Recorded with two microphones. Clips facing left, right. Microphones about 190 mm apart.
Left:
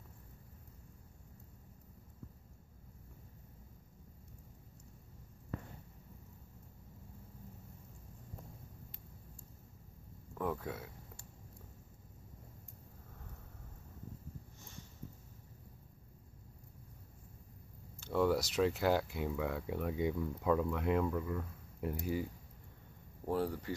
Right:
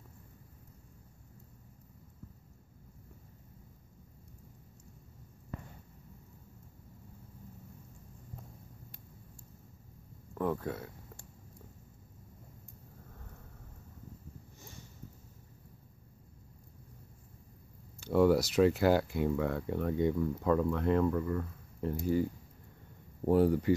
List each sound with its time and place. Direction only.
10.3 s speech: centre (ahead or behind)
18.0 s speech: 5° right (ahead or behind)
23.3 s speech: 15° right (ahead or behind)